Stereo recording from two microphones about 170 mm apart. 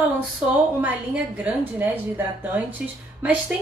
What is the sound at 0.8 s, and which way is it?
Speech, 10° right (ahead or behind).